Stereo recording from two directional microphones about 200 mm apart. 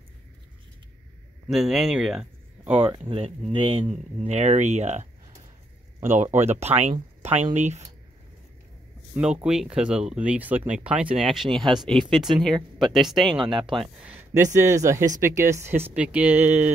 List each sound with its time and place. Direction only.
1.5 s speech: centre (ahead or behind)
2.8 s speech: 25° right (ahead or behind)
6.3 s speech: 35° right (ahead or behind)
9.1 s speech: 5° right (ahead or behind)
14.5 s speech: 15° right (ahead or behind)